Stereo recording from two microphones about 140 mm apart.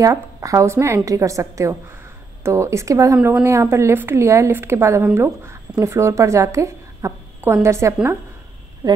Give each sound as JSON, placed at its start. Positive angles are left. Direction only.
{"t": 0.0, "sound": "a woman's voice", "side_deg": -25}
{"t": 3.2, "sound": "a woman's voice", "side_deg": -10}
{"t": 3.4, "sound": "a woman's voice", "side_deg": -20}